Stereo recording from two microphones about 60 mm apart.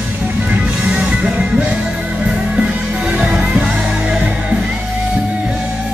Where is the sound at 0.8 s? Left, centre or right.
Centre.